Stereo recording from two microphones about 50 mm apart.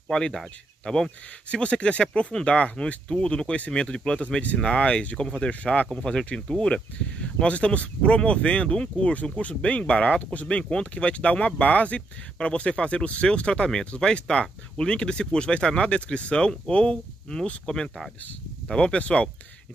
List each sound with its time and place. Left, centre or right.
0.1 s speech: centre
1.5 s speech: left
5.5 s speech: left
5.9 s speech: centre